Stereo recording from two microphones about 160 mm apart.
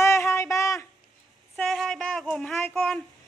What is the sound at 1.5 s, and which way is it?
A woman's voice, 5° left (ahead or behind).